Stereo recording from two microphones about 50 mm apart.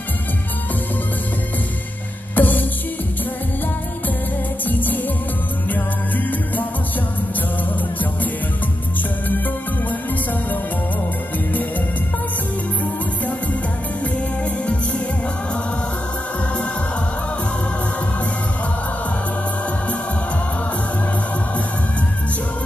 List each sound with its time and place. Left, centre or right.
2.3 s music: left
4.6 s music: left